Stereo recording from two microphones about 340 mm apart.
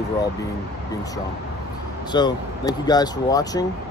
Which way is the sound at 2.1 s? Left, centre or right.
Centre.